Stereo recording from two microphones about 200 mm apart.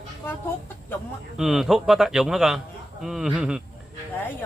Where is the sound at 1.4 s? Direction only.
Centre (ahead or behind).